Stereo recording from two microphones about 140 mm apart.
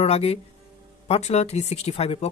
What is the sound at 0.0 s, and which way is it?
Speech, 45° left (ahead or behind).